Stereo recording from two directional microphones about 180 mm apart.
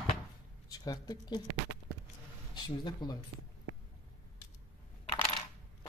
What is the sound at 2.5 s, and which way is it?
Speech, 25° left (ahead or behind).